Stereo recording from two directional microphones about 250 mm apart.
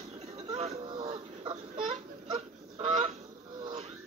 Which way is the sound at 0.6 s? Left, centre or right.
Right.